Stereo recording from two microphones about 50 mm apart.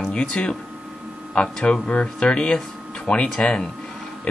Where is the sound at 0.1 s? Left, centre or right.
Left.